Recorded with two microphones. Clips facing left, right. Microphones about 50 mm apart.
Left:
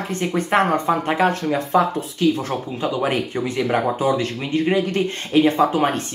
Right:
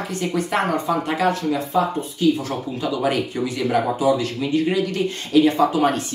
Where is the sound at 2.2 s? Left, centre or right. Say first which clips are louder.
Even; left.